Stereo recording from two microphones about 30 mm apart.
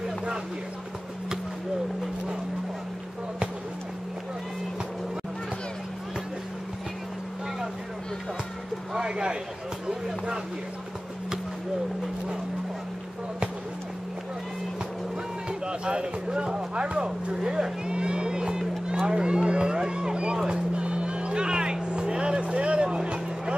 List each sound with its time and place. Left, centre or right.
8.9 s a sound: right
15.6 s speech: right
17.8 s music: right
18.9 s a sound: right
20.7 s music: right
21.8 s vehicle: right